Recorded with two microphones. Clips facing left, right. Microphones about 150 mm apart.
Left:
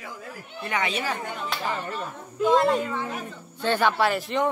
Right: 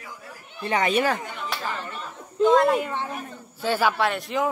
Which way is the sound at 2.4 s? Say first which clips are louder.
Right 3 dB; 30° right (ahead or behind).